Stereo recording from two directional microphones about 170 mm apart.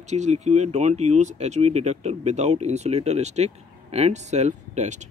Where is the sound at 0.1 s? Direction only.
40° right (ahead or behind).